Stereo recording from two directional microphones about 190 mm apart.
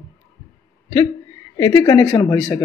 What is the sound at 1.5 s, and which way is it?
A man's voice, 20° left (ahead or behind).